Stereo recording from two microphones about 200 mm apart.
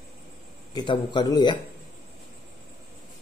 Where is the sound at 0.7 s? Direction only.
20° left (ahead or behind).